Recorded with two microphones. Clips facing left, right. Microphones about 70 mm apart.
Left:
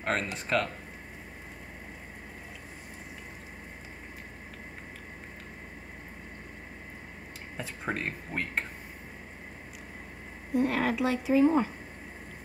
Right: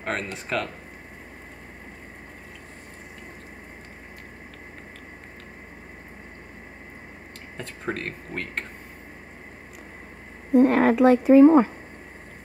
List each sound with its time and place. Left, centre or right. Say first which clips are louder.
0.0 s speech: right 1 dB; centre
7.5 s speech: right 3 dB; centre
10.5 s speech: right 10 dB; right